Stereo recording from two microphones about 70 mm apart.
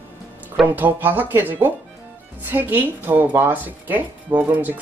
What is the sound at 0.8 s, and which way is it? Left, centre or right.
Speech, right.